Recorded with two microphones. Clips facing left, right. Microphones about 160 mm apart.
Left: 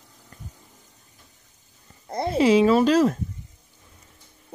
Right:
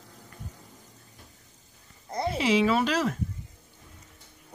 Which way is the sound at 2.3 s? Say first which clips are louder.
Left 7 dB; 40° left (ahead or behind).